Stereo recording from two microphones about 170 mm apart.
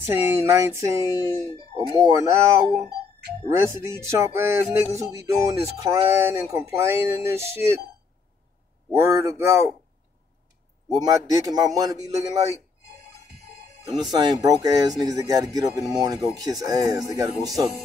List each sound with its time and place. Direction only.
0.1 s speech: 15° right (ahead or behind)
8.9 s speech: 15° right (ahead or behind)
11.1 s speech: 20° right (ahead or behind)
14.1 s speech: 20° right (ahead or behind)